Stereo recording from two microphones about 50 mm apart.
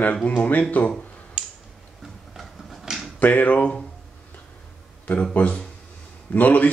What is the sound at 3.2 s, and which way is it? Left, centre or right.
Speech, left.